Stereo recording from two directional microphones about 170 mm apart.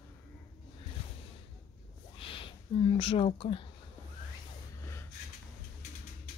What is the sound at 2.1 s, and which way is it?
Speech, 30° left (ahead or behind).